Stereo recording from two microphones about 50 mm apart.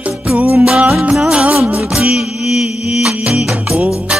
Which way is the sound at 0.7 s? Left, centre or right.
Centre.